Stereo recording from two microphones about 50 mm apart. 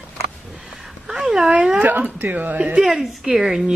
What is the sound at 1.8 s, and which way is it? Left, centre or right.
Speech, right.